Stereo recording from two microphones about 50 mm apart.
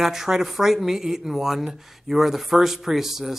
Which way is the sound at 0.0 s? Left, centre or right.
Centre.